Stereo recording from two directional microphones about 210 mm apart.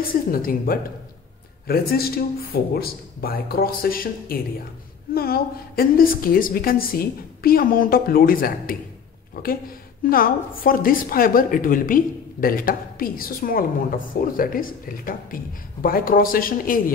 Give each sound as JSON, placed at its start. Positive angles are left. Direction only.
{"t": 0.0, "sound": "a woman's voice", "side_deg": 45}